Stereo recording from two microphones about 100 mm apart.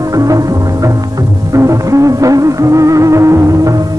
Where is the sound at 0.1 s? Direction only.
35° right (ahead or behind).